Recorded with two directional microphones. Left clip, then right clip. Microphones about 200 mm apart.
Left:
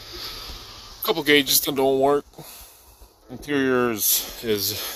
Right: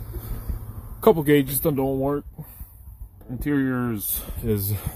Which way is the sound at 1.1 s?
15° right (ahead or behind).